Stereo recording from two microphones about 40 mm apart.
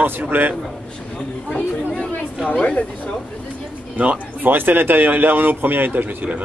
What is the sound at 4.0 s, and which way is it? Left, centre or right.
Speech, right.